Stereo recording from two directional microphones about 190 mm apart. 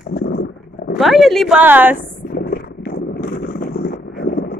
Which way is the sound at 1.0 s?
Centre (ahead or behind).